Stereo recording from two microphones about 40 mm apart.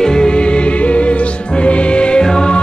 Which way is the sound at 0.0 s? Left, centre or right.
Centre.